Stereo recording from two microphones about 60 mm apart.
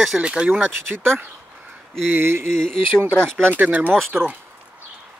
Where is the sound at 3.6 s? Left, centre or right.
Right.